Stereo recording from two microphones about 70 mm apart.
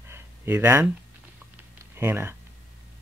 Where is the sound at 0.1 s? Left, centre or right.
Right.